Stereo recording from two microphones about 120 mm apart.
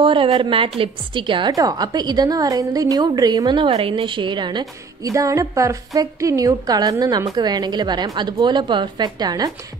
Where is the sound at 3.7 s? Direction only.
50° right (ahead or behind).